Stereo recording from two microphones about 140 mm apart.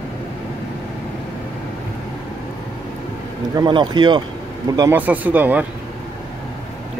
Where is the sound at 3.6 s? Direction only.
35° right (ahead or behind).